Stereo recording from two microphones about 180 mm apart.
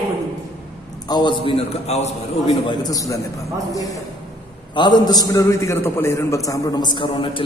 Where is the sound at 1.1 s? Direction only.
25° left (ahead or behind).